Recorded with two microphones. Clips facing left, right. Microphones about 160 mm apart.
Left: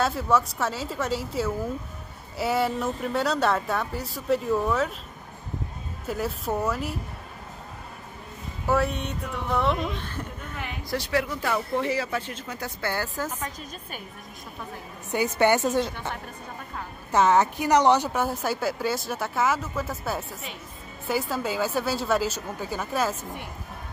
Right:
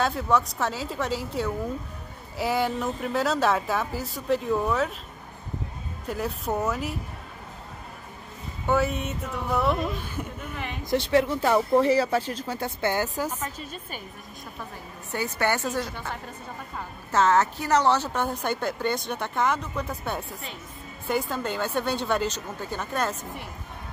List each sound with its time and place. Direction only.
0.0 s a woman's voice: centre (ahead or behind)
6.0 s a woman's voice: centre (ahead or behind)
8.6 s a woman's voice: centre (ahead or behind)
10.9 s speech: 25° right (ahead or behind)
13.4 s a woman's voice: centre (ahead or behind)
15.1 s a woman's voice: 20° left (ahead or behind)
17.1 s a woman's voice: 15° left (ahead or behind)